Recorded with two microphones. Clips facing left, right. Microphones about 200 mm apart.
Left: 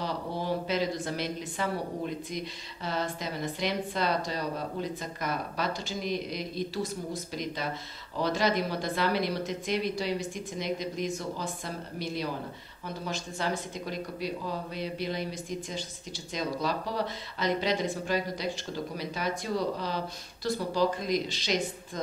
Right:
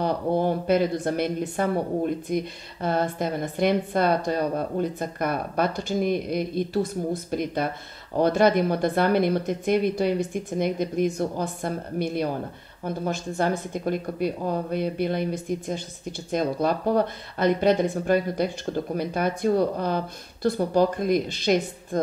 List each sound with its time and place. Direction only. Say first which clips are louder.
0.0 s speech: right 10 dB; 55° right (ahead or behind)